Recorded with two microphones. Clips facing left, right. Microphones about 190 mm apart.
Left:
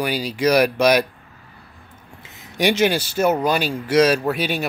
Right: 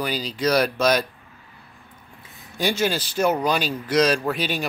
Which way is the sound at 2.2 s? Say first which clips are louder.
Left 5 dB; 85° left.